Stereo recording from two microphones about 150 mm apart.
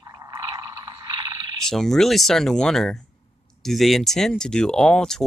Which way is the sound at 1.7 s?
Centre (ahead or behind).